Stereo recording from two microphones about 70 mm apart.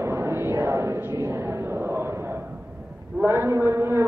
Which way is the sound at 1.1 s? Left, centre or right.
Right.